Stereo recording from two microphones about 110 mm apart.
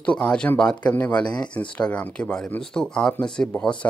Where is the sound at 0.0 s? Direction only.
10° left (ahead or behind).